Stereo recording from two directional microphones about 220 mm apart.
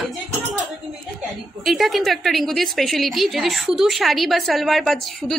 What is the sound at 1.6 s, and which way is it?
A woman's voice, centre (ahead or behind).